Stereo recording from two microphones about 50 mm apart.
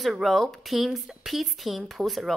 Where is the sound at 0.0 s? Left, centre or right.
Centre.